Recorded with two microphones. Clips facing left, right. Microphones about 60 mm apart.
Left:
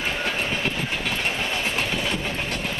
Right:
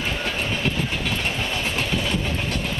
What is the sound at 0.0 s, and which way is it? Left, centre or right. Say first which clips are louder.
Train: even; left.